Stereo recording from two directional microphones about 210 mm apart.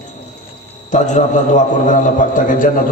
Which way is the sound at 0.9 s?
35° left (ahead or behind).